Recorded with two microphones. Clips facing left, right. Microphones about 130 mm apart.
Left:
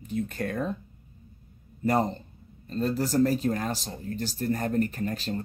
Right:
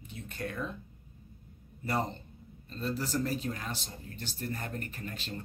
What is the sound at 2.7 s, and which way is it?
Speech, 45° left (ahead or behind).